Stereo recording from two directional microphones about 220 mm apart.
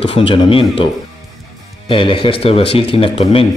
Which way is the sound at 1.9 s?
20° left (ahead or behind).